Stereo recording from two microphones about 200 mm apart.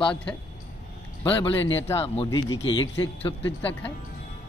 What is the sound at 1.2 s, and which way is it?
Speech, 25° left (ahead or behind).